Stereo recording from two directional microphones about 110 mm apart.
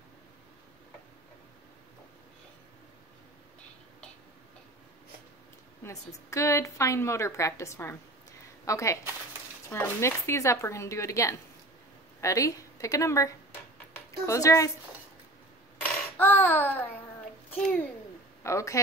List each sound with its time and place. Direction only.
5.9 s a woman's voice: 25° left (ahead or behind)
16.2 s babbling: 20° left (ahead or behind)
18.4 s speech: 25° left (ahead or behind)